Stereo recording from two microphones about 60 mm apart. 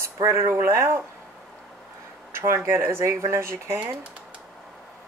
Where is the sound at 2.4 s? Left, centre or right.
Right.